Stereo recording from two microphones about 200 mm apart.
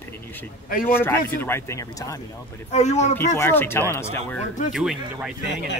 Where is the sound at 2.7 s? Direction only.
35° left (ahead or behind).